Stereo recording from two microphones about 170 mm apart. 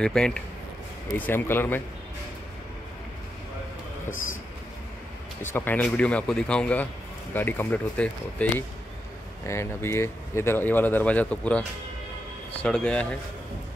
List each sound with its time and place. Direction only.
0.0 s speech: 5° left (ahead or behind)
4.1 s train: 50° left (ahead or behind)
5.4 s speech: 10° left (ahead or behind)
12.6 s speech: 5° left (ahead or behind)